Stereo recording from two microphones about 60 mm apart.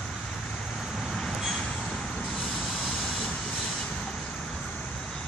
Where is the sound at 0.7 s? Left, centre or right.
Centre.